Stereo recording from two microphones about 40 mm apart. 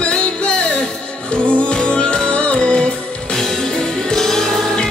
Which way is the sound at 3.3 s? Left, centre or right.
Centre.